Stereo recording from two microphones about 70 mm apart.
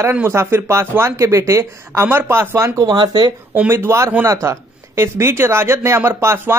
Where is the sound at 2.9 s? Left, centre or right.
Right.